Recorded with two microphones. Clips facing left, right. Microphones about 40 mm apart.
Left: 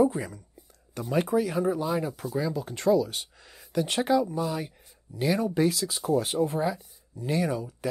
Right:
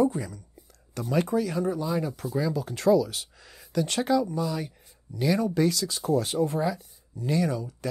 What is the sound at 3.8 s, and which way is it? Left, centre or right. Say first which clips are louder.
Speech: even; centre.